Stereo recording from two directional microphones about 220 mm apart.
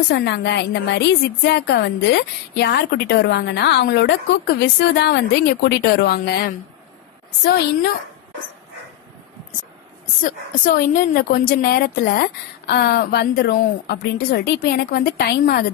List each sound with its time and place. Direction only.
0.1 s a woman's voice: 50° left (ahead or behind)
10.2 s a woman's voice: 40° left (ahead or behind)